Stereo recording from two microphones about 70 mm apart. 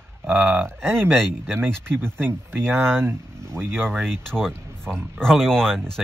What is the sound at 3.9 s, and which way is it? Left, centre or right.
Speech, centre.